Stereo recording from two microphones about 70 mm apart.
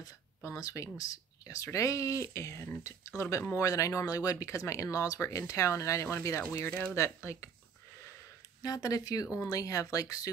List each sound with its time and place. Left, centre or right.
0.6 s speech: left
6.5 s speech: left
7.3 s speech: left
8.6 s speech: left